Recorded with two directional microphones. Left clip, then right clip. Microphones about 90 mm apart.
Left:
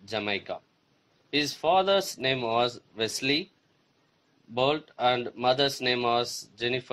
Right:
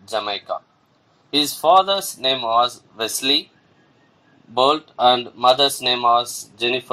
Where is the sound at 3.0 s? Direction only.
85° left.